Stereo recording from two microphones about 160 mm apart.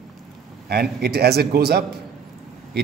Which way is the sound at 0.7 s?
80° right.